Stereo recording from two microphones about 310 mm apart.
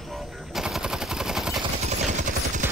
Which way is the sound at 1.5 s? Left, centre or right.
Right.